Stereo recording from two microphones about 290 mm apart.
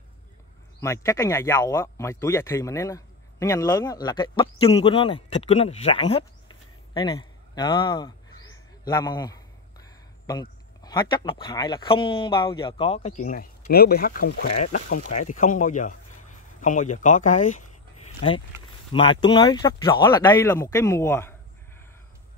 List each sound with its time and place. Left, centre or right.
0.7 s speech: centre
18.9 s speech: centre